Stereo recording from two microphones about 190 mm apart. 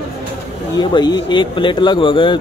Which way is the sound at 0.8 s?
25° left (ahead or behind).